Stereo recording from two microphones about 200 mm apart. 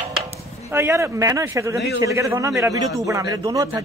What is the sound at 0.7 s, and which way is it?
A man's voice, 15° right (ahead or behind).